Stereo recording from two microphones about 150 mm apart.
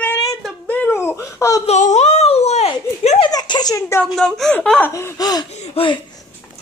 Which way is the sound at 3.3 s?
25° left (ahead or behind).